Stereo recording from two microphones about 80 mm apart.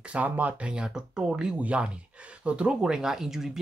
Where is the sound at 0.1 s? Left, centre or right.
Centre.